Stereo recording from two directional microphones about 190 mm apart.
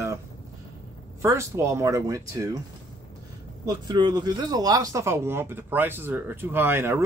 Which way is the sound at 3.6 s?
25° right (ahead or behind).